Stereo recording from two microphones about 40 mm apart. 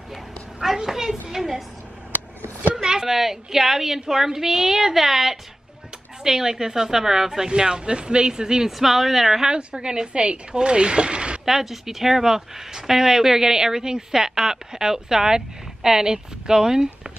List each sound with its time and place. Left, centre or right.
0.6 s a sound: centre
2.7 s a sound: centre
3.1 s speech: centre
8.7 s speech: centre
9.5 s speech: right
11.4 s speech: centre